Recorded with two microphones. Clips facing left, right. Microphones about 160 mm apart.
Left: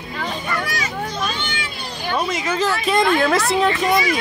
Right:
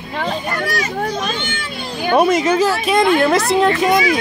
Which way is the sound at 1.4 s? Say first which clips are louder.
Right 3 dB; 50° right (ahead or behind).